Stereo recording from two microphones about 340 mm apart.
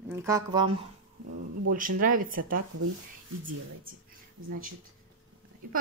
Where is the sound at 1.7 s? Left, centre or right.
Right.